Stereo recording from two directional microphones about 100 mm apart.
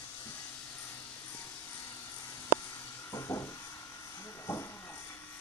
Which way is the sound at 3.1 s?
30° left (ahead or behind).